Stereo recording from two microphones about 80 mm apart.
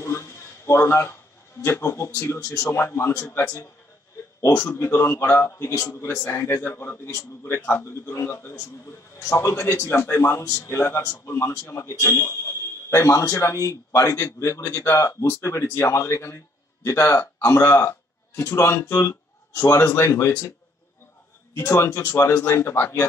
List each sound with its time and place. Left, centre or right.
0.0 s a sound: left
1.6 s a man's voice: left
4.5 s speech: centre
4.7 s a man's voice: left
7.1 s a man's voice: left
21.5 s a man's voice: left
22.4 s a man's voice: left